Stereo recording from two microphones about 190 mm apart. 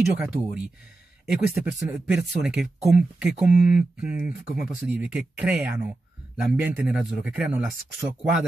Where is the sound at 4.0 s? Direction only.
5° right (ahead or behind).